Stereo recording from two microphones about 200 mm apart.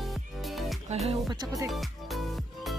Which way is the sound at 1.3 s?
20° right (ahead or behind).